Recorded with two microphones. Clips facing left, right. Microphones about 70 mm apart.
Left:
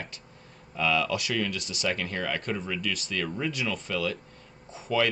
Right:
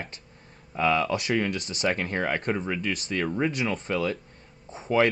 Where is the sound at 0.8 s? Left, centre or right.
Right.